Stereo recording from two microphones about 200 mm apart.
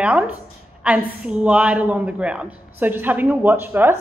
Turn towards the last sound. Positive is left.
turn(degrees=-10)  # may be behind; listen again after turning